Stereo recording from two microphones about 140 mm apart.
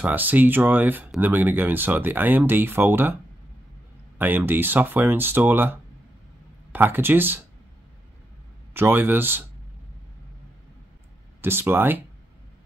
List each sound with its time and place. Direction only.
0.0 s speech: 15° right (ahead or behind)
4.2 s speech: 15° right (ahead or behind)
8.7 s speech: 15° right (ahead or behind)
11.4 s speech: 15° right (ahead or behind)